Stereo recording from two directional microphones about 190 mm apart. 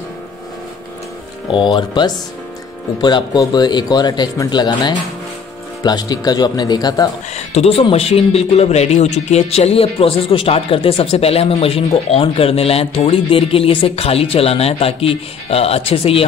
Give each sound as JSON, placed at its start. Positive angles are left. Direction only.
{"t": 1.5, "sound": "speech", "side_deg": 25}
{"t": 7.3, "sound": "a man's voice", "side_deg": 35}